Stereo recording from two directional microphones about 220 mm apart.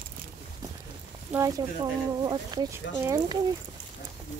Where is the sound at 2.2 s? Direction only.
15° right (ahead or behind).